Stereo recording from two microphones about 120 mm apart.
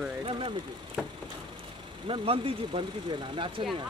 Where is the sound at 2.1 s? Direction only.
50° right (ahead or behind).